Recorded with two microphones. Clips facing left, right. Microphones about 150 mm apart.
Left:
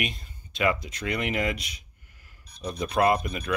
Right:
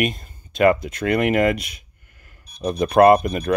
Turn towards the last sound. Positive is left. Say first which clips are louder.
# right 10 dB
turn(degrees=-45)  # may be behind; listen again after turning